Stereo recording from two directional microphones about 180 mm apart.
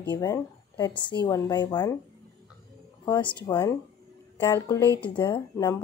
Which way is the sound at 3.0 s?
25° left (ahead or behind).